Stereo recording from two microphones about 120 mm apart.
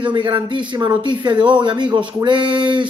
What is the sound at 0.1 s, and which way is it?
Speech, 40° right (ahead or behind).